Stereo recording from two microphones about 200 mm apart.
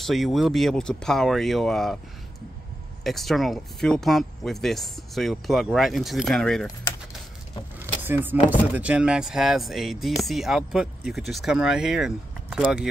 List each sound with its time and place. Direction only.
0.0 s speech: centre (ahead or behind)
3.0 s speech: centre (ahead or behind)
7.8 s speech: 10° right (ahead or behind)